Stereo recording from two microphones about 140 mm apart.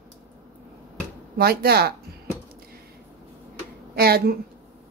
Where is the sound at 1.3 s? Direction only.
90° right.